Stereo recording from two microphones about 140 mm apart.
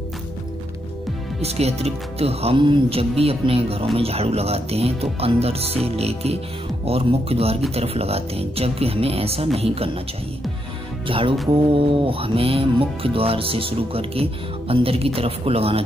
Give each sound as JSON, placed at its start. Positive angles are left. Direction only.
{"t": 1.4, "sound": "speech", "side_deg": -50}
{"t": 11.1, "sound": "music", "side_deg": -40}
{"t": 11.7, "sound": "speech", "side_deg": -40}